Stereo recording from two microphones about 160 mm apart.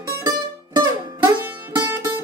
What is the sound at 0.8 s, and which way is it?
Music, 25° right (ahead or behind).